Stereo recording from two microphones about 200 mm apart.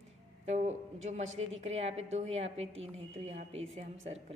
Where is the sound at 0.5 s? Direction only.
35° right (ahead or behind).